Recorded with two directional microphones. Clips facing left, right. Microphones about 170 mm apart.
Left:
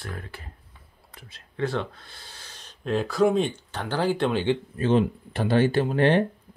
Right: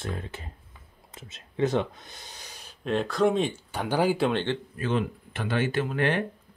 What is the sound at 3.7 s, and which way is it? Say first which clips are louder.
Speech: right 2 dB; 10° right (ahead or behind).